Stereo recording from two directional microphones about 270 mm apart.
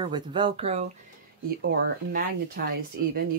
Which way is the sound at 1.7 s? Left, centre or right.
Right.